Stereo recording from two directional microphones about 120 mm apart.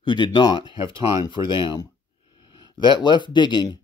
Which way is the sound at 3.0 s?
40° left (ahead or behind).